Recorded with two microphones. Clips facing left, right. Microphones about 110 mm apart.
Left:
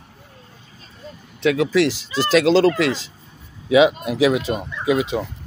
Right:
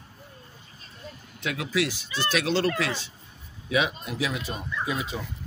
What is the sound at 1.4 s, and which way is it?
Speech, 80° left.